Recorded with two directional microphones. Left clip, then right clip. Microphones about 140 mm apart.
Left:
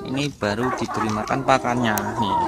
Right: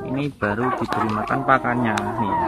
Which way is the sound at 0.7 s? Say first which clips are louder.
Right 2 dB; 5° left (ahead or behind).